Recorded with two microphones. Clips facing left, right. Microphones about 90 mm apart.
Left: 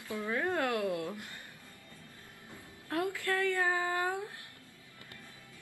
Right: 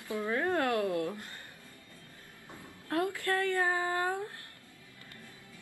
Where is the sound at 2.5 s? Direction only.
20° right (ahead or behind).